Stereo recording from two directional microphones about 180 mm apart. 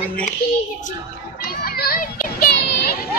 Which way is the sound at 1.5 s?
55° left (ahead or behind).